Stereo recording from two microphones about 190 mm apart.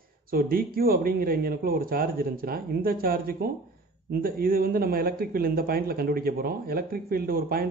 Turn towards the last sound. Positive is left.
turn(degrees=-50)  # may be behind; listen again after turning